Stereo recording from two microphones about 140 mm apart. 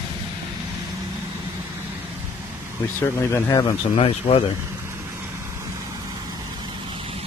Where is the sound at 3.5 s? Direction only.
40° left (ahead or behind).